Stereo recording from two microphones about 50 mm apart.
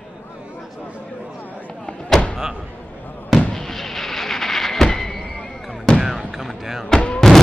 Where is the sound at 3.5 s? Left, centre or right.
Centre.